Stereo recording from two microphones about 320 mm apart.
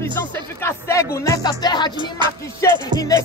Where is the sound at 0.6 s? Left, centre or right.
Centre.